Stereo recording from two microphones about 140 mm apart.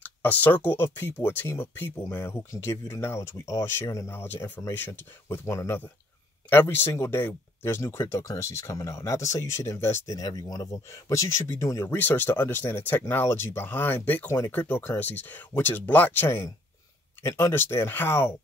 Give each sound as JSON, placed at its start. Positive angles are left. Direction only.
{"t": 0.0, "sound": "speech", "side_deg": 10}